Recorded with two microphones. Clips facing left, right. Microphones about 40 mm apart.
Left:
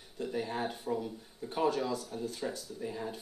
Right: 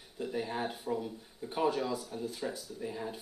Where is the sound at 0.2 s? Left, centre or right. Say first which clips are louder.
Even; centre.